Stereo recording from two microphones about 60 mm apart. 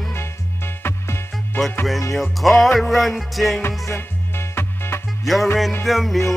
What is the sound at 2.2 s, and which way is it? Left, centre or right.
Music, centre.